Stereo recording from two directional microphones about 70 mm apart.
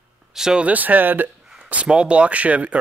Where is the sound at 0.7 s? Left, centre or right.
Right.